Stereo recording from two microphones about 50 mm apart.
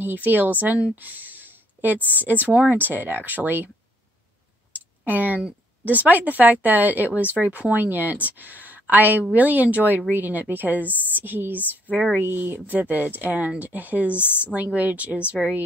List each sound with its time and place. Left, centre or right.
0.0 s speech: right
0.9 s a sound: right
2.0 s a woman's voice: left
2.2 s speech: right
4.7 s a sound: right
5.9 s speech: right
14.1 s a woman's voice: left
14.4 s speech: right